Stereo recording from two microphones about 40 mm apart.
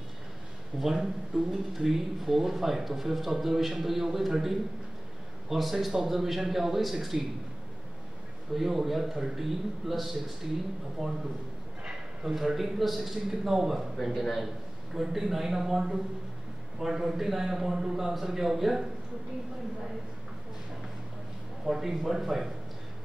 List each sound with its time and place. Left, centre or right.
0.7 s a man's voice: centre
8.5 s a man's voice: centre
11.8 s a sound: right
12.3 s speech: centre
15.0 s speech: centre
21.6 s a man's voice: centre